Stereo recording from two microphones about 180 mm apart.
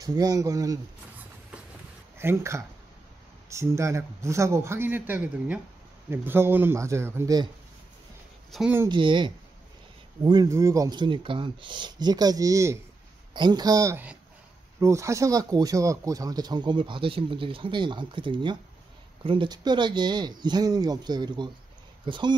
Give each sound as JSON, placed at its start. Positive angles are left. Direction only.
{"t": 0.0, "sound": "speech", "side_deg": -20}
{"t": 2.1, "sound": "speech", "side_deg": -15}
{"t": 8.5, "sound": "speech", "side_deg": 0}
{"t": 8.8, "sound": "speech", "side_deg": -25}